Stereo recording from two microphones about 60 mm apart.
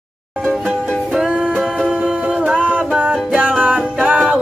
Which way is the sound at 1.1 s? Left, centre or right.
Centre.